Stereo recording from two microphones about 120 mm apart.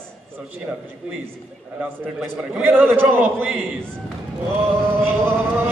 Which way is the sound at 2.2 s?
10° right (ahead or behind).